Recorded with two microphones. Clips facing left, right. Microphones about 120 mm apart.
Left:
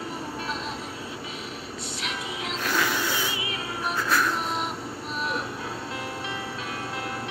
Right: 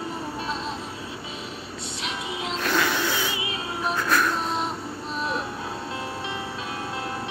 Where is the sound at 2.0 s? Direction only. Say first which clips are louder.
Right 3 dB; 25° right (ahead or behind).